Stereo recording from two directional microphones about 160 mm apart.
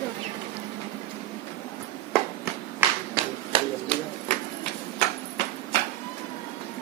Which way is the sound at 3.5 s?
35° right (ahead or behind).